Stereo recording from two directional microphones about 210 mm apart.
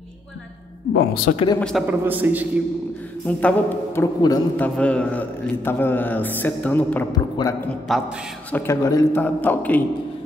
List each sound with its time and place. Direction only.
1.3 s speech: 25° left (ahead or behind)
1.6 s a man's voice: centre (ahead or behind)
3.3 s a man's voice: 5° left (ahead or behind)
7.9 s a man's voice: centre (ahead or behind)